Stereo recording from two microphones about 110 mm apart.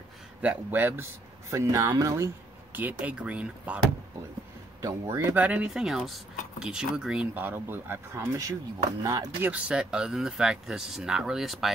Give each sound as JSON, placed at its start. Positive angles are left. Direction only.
{"t": 0.4, "sound": "speech", "side_deg": -15}
{"t": 4.8, "sound": "speech", "side_deg": -30}
{"t": 5.3, "sound": "speech", "side_deg": -15}
{"t": 7.3, "sound": "speech", "side_deg": -20}
{"t": 9.4, "sound": "speech", "side_deg": -10}